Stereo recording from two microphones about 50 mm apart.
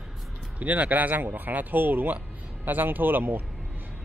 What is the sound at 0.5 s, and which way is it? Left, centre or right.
Speech, right.